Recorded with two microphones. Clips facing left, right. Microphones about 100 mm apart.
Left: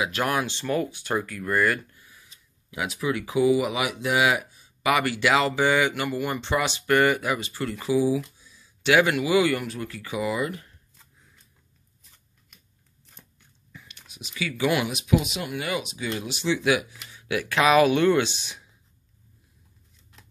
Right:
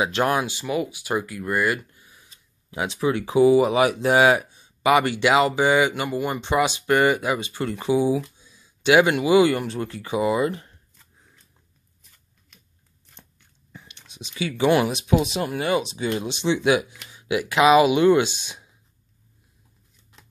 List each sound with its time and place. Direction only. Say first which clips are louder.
0.0 s speech: right 4 dB; 25° right (ahead or behind)
0.5 s speech: right 1 dB; 10° right (ahead or behind); by 10.7 s 25° right (ahead or behind)
13.7 s speech: right 2 dB; 25° right (ahead or behind)